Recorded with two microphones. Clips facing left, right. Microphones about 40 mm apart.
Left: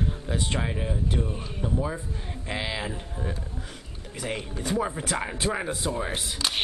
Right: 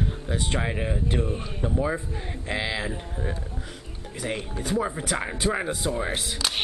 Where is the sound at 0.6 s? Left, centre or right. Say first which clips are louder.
Right 2 dB; right.